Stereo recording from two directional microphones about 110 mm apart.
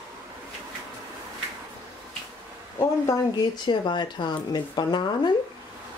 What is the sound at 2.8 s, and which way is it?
Speech, 35° left (ahead or behind).